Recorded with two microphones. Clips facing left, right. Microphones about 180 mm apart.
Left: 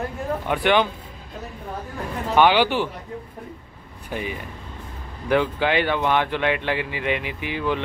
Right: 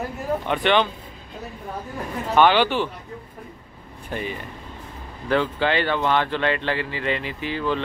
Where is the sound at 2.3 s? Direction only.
10° left (ahead or behind).